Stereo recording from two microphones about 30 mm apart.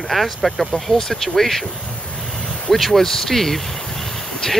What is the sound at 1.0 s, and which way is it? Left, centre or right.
Speech, centre.